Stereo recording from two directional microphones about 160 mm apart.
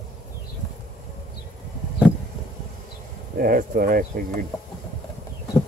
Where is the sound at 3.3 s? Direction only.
60° right (ahead or behind).